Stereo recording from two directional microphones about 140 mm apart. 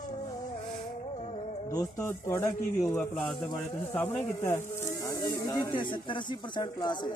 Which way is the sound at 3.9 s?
15° left (ahead or behind).